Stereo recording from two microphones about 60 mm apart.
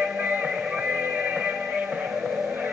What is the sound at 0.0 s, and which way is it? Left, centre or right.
Music, right.